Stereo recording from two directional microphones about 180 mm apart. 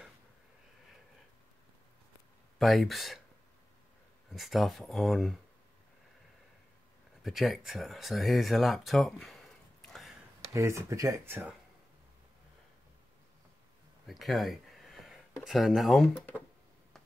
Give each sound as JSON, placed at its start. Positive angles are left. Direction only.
{"t": 2.6, "sound": "speech", "side_deg": 0}
{"t": 4.3, "sound": "speech", "side_deg": 0}
{"t": 7.2, "sound": "speech", "side_deg": 0}
{"t": 10.5, "sound": "speech", "side_deg": -15}
{"t": 14.0, "sound": "a sound", "side_deg": 0}
{"t": 15.4, "sound": "speech", "side_deg": 0}